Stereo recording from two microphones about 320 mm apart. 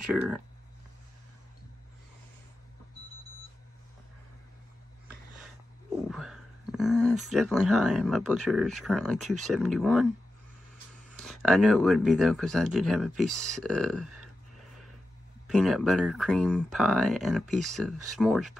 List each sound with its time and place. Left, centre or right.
0.0 s speech: centre
6.0 s speech: centre
11.2 s speech: centre
15.4 s speech: centre